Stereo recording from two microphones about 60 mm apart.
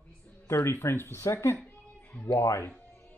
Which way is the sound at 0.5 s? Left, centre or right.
Left.